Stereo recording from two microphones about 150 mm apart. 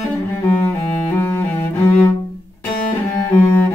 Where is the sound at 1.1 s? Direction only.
15° left (ahead or behind).